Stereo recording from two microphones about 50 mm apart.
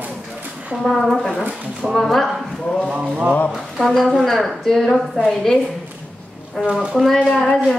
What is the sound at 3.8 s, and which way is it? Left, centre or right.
Speech, centre.